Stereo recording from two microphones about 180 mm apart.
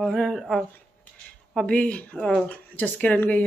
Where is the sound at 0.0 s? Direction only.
5° left (ahead or behind).